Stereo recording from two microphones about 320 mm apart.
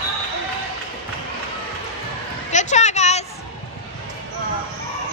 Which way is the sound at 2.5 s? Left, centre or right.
Left.